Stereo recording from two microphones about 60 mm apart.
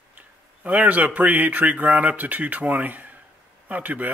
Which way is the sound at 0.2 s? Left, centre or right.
Right.